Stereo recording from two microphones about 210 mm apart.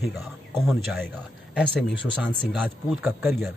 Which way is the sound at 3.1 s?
10° right (ahead or behind).